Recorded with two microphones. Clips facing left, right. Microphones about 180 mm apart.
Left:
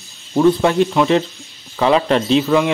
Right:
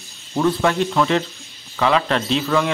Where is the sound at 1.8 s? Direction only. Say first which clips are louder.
Left 4 dB; 30° left (ahead or behind).